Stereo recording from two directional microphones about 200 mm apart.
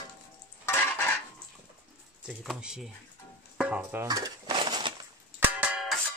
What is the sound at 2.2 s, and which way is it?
Speech, 5° right (ahead or behind).